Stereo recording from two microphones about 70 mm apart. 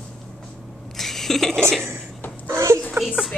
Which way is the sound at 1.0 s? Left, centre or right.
Centre.